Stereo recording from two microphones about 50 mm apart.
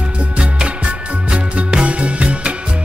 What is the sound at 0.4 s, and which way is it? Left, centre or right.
Music, centre.